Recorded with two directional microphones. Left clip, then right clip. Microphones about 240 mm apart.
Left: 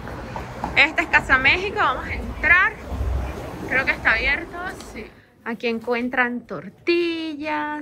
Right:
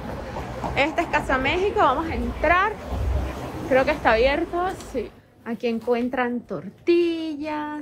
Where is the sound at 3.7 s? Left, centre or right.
Centre.